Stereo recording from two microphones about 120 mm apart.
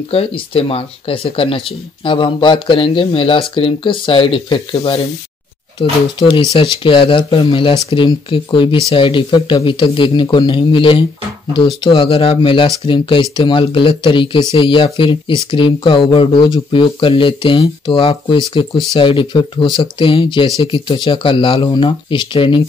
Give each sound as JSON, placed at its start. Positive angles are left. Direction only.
{"t": 0.1, "sound": "speech", "side_deg": 50}